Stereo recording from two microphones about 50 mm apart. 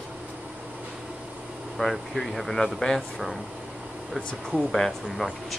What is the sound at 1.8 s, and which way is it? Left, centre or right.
Speech, centre.